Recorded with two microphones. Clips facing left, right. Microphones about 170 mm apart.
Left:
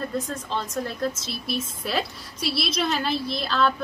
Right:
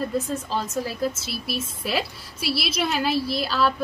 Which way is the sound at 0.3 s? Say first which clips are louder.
Right 3 dB; 5° right (ahead or behind).